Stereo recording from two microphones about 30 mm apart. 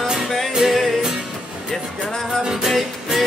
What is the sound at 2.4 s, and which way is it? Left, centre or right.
Music, centre.